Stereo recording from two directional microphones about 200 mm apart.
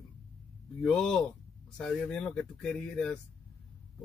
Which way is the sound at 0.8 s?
5° left (ahead or behind).